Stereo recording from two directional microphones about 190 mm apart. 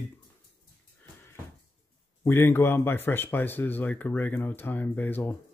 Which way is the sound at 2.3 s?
10° left (ahead or behind).